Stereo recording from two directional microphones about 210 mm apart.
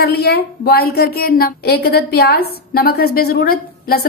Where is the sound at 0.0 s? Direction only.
50° left (ahead or behind).